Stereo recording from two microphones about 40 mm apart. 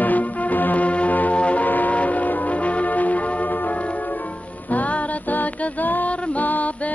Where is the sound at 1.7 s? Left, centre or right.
Left.